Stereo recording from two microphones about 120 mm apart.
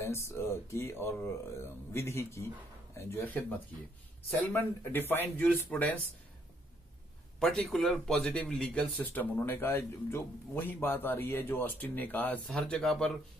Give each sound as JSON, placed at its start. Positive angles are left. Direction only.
{"t": 0.0, "sound": "speech", "side_deg": 25}
{"t": 7.3, "sound": "speech", "side_deg": 5}